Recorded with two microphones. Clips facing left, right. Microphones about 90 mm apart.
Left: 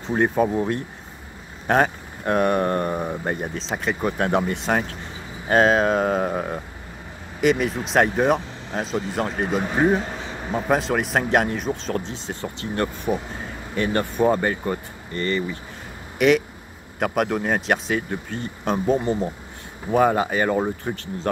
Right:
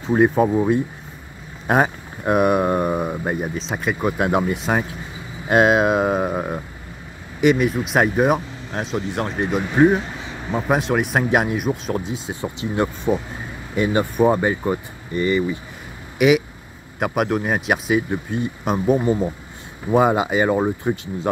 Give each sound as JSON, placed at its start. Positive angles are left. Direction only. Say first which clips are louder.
{"t": 0.0, "sound": "speech", "louder": "right 4 dB", "side_deg": -5}
{"t": 19.9, "sound": "speech", "louder": "right 2 dB", "side_deg": -15}